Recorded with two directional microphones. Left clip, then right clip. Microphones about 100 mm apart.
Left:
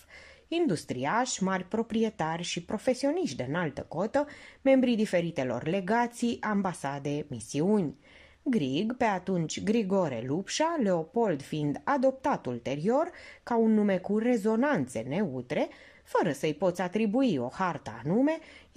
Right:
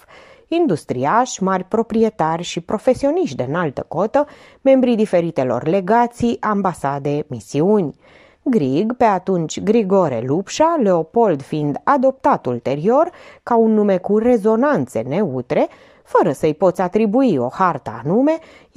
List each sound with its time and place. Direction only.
0.5 s a woman's voice: 35° right (ahead or behind)